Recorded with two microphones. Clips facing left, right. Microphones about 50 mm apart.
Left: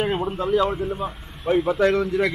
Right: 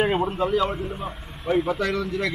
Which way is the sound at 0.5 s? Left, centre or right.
Centre.